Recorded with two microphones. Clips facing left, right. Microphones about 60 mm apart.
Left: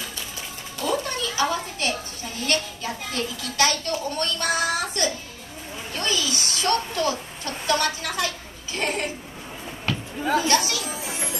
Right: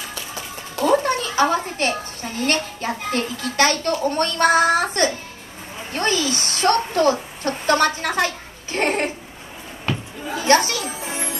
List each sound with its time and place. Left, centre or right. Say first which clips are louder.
0.7 s a woman's voice: right 8 dB; right
8.7 s a sound: right 6 dB; right
10.4 s music: right 5 dB; right